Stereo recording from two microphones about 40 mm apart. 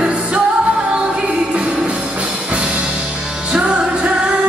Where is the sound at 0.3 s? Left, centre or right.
Right.